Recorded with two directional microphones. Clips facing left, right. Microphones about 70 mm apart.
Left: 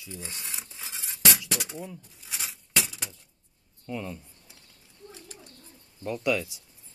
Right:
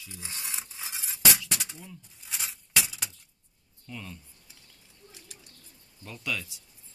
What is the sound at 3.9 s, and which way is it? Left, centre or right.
Speech, centre.